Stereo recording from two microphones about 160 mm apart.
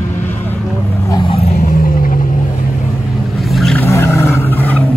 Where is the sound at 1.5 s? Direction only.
60° left (ahead or behind).